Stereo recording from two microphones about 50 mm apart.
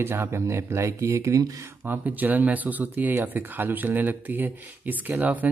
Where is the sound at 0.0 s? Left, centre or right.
Right.